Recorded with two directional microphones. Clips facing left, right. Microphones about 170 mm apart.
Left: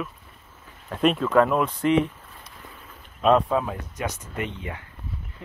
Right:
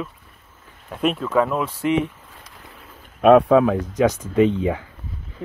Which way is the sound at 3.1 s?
60° right (ahead or behind).